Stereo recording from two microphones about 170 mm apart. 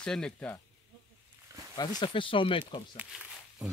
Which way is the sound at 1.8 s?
25° left (ahead or behind).